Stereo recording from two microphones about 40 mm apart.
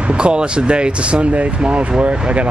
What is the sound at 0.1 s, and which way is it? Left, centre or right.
Speech, right.